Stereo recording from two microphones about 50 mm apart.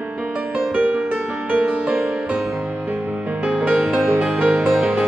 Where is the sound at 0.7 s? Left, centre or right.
Right.